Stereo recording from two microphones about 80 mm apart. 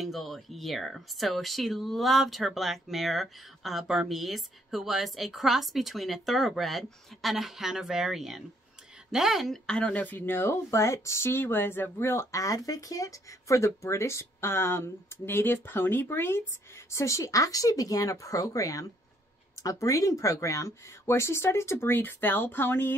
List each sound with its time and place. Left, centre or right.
0.0 s a woman's voice: centre
9.7 s speech: centre